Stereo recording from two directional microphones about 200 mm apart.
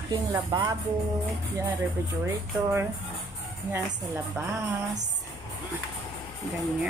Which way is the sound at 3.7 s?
10° right (ahead or behind).